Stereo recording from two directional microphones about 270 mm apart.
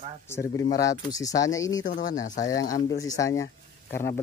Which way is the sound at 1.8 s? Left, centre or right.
Left.